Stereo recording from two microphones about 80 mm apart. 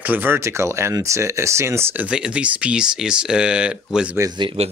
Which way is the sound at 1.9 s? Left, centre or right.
Centre.